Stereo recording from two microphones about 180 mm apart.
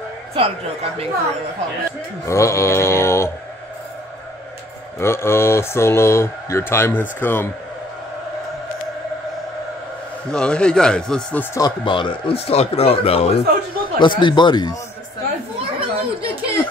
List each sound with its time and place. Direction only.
2.2 s speech: 15° left (ahead or behind)
4.9 s speech: 15° left (ahead or behind)
10.3 s speech: 5° left (ahead or behind)
11.5 s speech: 25° left (ahead or behind)
15.8 s children playing: 30° right (ahead or behind)